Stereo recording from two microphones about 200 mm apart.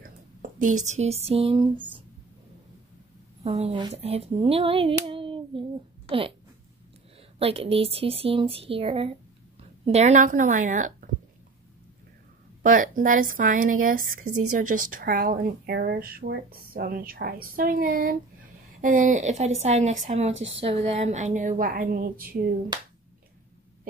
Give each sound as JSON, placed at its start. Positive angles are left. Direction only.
{"t": 0.4, "sound": "speech", "side_deg": -40}
{"t": 3.4, "sound": "speech", "side_deg": -25}
{"t": 7.3, "sound": "speech", "side_deg": -30}
{"t": 12.6, "sound": "a woman's voice", "side_deg": -45}
{"t": 22.7, "sound": "speech", "side_deg": -20}